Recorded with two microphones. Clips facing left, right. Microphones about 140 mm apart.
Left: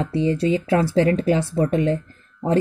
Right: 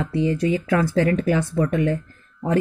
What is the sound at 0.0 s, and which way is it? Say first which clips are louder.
Speech: left 1 dB; 25° left (ahead or behind).